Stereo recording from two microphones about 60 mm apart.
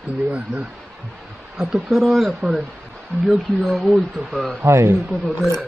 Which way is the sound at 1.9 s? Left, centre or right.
Centre.